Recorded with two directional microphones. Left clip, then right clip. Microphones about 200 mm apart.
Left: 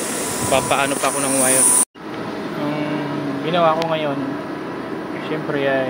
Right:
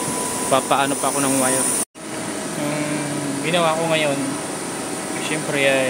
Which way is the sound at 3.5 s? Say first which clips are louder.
Left 2 dB; 10° right (ahead or behind).